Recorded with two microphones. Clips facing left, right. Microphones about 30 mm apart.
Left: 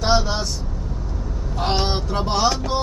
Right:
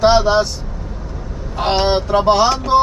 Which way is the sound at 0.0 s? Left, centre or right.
Right.